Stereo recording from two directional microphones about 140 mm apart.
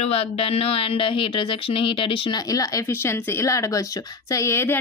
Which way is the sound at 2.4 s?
25° left (ahead or behind).